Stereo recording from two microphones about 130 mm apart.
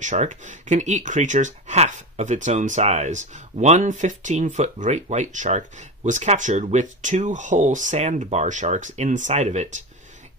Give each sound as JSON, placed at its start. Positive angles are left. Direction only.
{"t": 0.0, "sound": "speech", "side_deg": -65}